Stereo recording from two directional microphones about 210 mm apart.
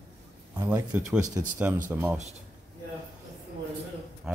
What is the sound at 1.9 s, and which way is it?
Speech, 10° right (ahead or behind).